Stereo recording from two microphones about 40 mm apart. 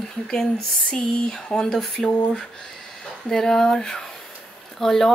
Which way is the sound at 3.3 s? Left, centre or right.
Centre.